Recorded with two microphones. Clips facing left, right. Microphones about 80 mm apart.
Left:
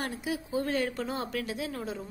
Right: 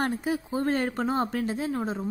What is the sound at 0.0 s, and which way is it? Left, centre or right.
A woman's voice, right.